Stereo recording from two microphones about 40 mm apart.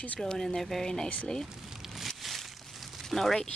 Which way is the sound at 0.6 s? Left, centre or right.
Centre.